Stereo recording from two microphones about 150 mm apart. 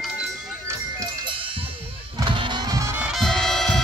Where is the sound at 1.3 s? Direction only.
35° right (ahead or behind).